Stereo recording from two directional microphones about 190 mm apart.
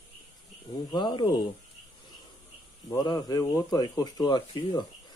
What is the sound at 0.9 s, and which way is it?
Speech, 25° left (ahead or behind).